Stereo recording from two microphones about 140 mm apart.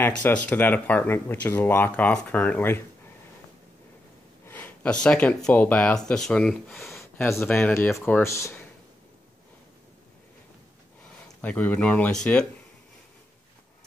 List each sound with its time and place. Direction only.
0.0 s speech: 10° left (ahead or behind)
4.5 s a sound: 15° left (ahead or behind)
5.0 s speech: 5° left (ahead or behind)
11.4 s speech: 10° left (ahead or behind)